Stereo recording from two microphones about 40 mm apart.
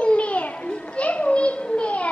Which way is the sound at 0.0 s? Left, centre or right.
Left.